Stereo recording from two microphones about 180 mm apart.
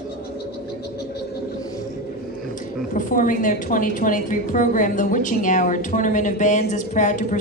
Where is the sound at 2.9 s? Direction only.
50° left (ahead or behind).